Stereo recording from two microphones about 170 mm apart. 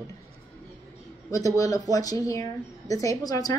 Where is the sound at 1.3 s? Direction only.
20° left (ahead or behind).